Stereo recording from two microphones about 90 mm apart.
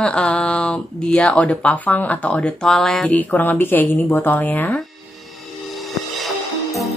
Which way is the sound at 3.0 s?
20° left (ahead or behind).